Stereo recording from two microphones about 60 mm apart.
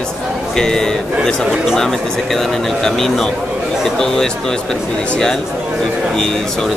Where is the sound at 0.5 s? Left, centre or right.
Centre.